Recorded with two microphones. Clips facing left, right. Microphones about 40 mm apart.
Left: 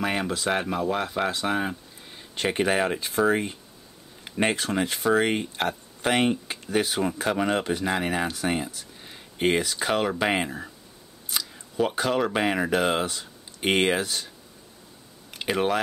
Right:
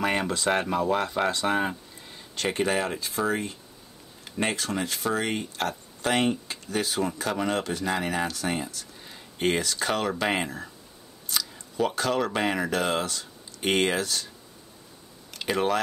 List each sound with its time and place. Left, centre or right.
0.0 s speech: centre
2.1 s speech: centre
15.3 s speech: centre